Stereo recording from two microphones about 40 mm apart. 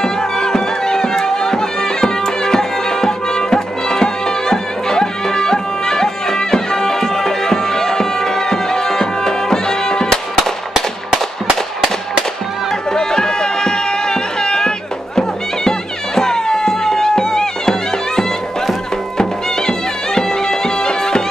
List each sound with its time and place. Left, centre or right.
0.0 s music: centre
12.9 s music: centre
16.2 s music: centre
20.2 s music: centre